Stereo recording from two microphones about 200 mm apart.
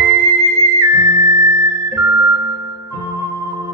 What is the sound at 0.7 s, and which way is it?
Music, 15° right (ahead or behind).